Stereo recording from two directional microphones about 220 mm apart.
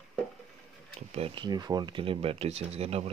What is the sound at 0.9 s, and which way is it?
Speech, 25° right (ahead or behind).